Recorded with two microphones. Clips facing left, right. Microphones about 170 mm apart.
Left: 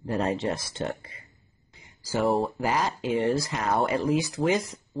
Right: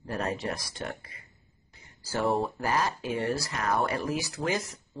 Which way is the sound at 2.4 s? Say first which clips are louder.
Left 2 dB; 20° left (ahead or behind).